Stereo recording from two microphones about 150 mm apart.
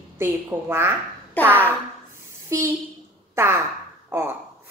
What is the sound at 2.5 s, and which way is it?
Speech, 20° right (ahead or behind).